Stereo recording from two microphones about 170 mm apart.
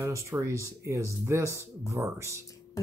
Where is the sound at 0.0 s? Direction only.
15° right (ahead or behind).